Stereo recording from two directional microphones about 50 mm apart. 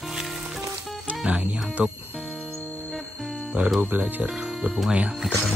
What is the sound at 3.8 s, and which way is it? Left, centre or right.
Speech, right.